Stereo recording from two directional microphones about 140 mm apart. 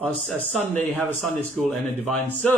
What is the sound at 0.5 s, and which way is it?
Speech, 10° left (ahead or behind).